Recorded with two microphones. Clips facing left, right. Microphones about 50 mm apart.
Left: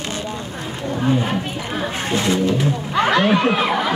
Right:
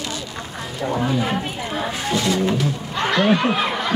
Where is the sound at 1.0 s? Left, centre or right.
Left.